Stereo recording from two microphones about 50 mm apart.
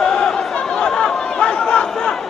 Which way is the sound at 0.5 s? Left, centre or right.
Centre.